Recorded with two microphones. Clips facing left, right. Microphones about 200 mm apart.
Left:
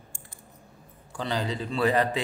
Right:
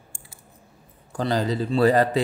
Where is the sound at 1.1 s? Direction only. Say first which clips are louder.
Right 6 dB; 40° right (ahead or behind).